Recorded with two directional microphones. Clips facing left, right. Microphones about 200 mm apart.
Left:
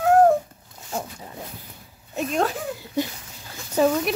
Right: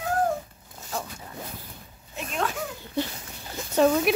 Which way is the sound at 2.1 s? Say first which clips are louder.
Left 6 dB; 40° left (ahead or behind).